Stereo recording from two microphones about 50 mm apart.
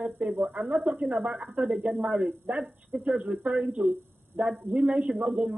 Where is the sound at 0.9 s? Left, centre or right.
Right.